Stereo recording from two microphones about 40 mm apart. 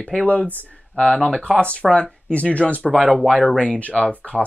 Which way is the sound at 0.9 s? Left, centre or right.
Left.